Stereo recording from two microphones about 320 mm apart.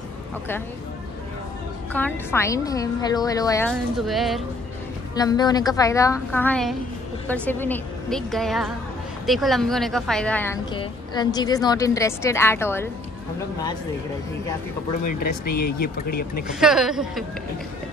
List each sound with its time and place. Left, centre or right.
1.9 s a woman's voice: centre
5.1 s a woman's voice: centre
15.0 s speech: left
16.5 s a woman's voice: centre